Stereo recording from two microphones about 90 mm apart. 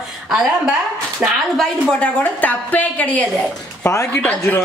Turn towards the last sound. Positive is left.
turn(degrees=15)  # may be behind; listen again after turning